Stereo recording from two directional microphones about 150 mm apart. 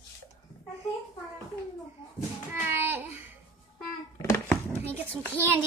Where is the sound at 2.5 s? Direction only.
15° right (ahead or behind).